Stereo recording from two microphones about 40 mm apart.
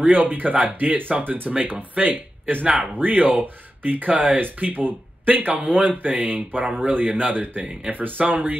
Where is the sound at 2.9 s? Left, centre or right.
Right.